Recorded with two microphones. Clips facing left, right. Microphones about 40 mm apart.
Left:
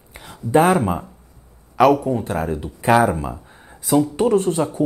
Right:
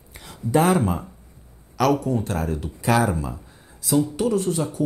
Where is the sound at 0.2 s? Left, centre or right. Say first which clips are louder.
Left 4 dB; centre.